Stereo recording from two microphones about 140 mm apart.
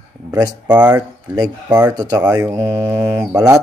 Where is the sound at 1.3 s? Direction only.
30° right (ahead or behind).